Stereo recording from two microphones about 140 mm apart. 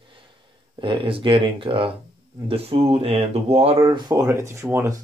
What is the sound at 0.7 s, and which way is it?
Speech, 40° right (ahead or behind).